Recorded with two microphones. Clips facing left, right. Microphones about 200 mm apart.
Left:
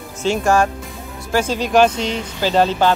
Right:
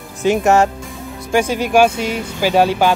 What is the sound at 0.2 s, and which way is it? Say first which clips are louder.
Speech: right 3 dB; 20° right (ahead or behind).